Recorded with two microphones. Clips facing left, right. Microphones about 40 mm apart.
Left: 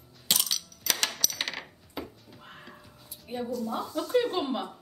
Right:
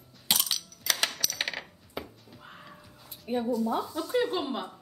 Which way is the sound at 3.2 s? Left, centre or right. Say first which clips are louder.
Right 4 dB; centre.